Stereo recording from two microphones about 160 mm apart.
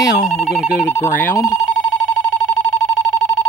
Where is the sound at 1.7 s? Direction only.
Centre (ahead or behind).